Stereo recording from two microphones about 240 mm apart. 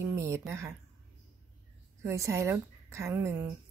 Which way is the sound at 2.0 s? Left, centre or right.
Centre.